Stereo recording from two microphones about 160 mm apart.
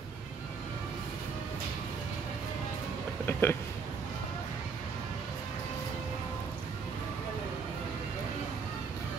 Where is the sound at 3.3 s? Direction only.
15° left (ahead or behind).